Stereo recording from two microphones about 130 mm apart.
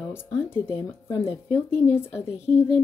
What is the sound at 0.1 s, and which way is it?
Speech, 15° left (ahead or behind).